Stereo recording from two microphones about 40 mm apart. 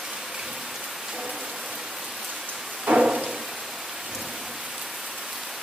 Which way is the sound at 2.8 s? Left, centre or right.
Right.